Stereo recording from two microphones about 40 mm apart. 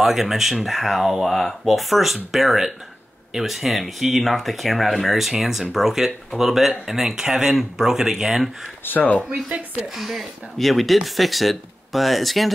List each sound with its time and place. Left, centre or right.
0.0 s speech: centre
8.8 s speech: left
9.9 s speech: centre